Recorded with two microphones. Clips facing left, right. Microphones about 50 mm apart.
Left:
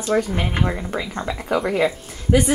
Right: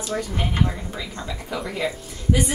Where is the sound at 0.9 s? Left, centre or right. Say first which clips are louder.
Left 6 dB; left.